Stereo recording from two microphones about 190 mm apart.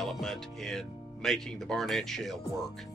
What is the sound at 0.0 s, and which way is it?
Speech, centre (ahead or behind).